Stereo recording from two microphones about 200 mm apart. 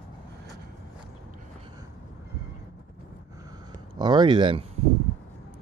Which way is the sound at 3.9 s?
20° right (ahead or behind).